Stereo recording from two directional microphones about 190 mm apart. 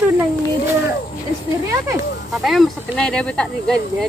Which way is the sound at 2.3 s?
Centre (ahead or behind).